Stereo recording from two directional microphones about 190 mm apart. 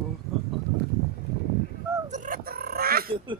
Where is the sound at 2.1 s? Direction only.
45° right (ahead or behind).